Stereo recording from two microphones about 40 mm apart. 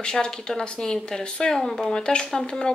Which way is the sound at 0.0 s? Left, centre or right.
Left.